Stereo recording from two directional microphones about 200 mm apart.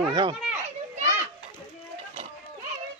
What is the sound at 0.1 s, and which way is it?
Speech, 25° right (ahead or behind).